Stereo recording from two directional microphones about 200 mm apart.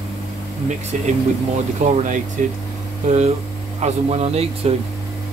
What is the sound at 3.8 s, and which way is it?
Speech, 30° right (ahead or behind).